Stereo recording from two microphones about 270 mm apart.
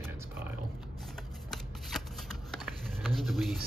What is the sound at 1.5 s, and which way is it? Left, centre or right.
Speech, centre.